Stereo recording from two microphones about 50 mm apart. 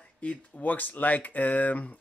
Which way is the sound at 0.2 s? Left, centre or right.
Left.